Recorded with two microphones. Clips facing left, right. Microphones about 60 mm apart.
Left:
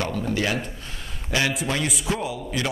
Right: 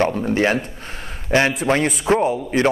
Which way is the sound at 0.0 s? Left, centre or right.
Right.